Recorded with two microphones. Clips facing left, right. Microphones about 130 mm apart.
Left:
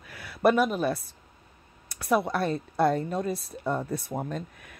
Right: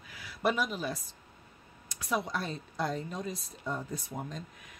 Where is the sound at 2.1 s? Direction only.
60° left (ahead or behind).